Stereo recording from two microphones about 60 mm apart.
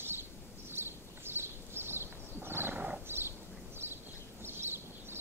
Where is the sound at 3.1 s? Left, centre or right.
Right.